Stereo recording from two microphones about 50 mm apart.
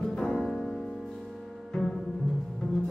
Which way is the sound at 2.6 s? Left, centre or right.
Centre.